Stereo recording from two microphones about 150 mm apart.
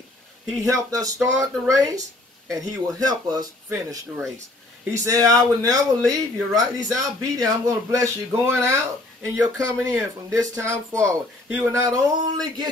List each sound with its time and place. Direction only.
0.6 s speech: 25° right (ahead or behind)
5.0 s speech: 25° right (ahead or behind)
11.8 s speech: 25° right (ahead or behind)